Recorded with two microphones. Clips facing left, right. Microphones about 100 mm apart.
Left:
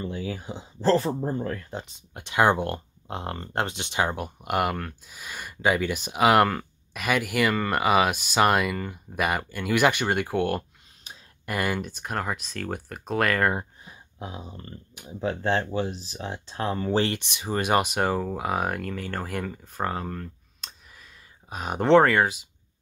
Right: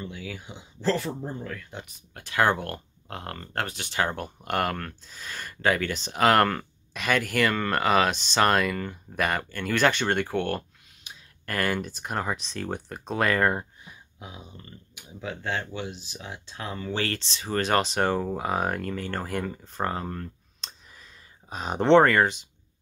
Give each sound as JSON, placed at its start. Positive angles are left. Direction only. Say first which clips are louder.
{"t": 0.0, "sound": "speech", "louder": "left 5 dB", "side_deg": 35}
{"t": 2.0, "sound": "speech", "louder": "left 2 dB", "side_deg": 20}
{"t": 11.1, "sound": "a sound", "louder": "left 1 dB", "side_deg": 35}
{"t": 11.4, "sound": "speech", "louder": "even", "side_deg": 10}
{"t": 13.8, "sound": "speech", "louder": "left 5 dB", "side_deg": 35}
{"t": 17.0, "sound": "speech", "louder": "left 3 dB", "side_deg": 15}
{"t": 21.5, "sound": "speech", "louder": "even", "side_deg": 5}